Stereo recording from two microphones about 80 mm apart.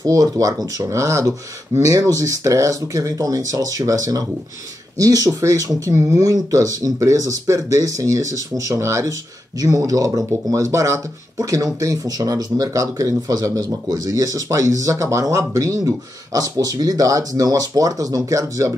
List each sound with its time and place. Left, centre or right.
0.0 s speech: right